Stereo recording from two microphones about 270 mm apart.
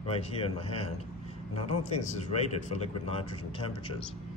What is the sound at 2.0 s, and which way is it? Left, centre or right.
Speech, left.